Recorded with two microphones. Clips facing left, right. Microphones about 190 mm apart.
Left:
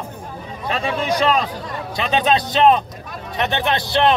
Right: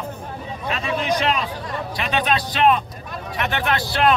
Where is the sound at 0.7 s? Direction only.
35° left (ahead or behind).